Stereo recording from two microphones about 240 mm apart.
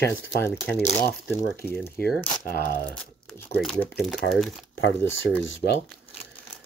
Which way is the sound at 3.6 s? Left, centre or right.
Centre.